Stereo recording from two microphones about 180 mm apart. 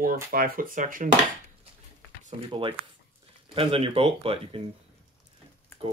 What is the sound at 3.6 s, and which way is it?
Speech, 30° right (ahead or behind).